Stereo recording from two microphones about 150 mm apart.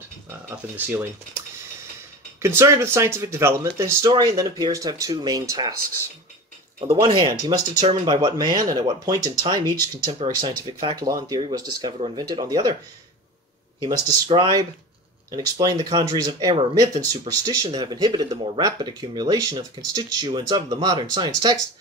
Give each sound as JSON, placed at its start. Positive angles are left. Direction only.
{"t": 0.5, "sound": "speech", "side_deg": -15}
{"t": 2.4, "sound": "speech", "side_deg": -15}
{"t": 6.9, "sound": "speech", "side_deg": -25}
{"t": 13.7, "sound": "speech", "side_deg": -25}